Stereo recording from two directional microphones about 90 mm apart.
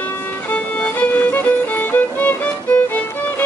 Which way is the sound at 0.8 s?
15° left (ahead or behind).